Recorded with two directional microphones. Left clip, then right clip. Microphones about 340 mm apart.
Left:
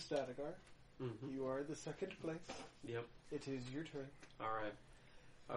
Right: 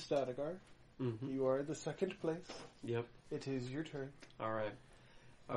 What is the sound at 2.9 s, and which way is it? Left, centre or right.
A man's voice, right.